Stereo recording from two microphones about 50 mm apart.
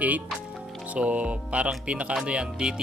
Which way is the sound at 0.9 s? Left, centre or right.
Right.